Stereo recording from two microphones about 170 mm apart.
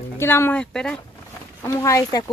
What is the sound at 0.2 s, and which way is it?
Speech, 15° left (ahead or behind).